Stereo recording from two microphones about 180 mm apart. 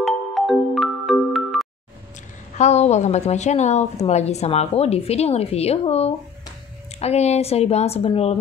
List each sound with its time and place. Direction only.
0.0 s music: centre (ahead or behind)
2.5 s a woman's voice: 40° left (ahead or behind)